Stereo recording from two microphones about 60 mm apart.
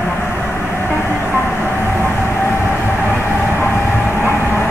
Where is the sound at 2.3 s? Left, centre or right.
Left.